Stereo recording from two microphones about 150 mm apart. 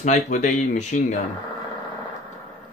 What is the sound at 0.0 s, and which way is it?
Speech, 55° left (ahead or behind).